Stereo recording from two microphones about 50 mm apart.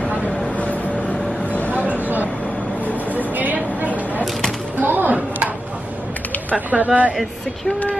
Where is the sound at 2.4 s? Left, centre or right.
Left.